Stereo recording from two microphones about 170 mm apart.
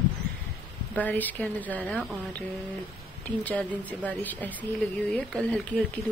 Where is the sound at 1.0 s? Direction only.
10° left (ahead or behind).